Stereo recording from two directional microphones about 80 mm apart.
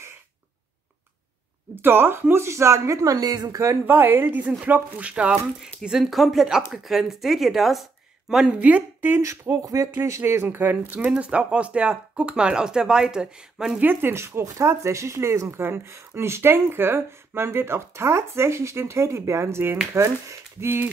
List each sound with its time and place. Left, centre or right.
1.8 s speech: right
3.8 s speech: right; by 8.5 s centre
8.5 s speech: centre
9.2 s speech: right; by 13.7 s centre
13.7 s speech: right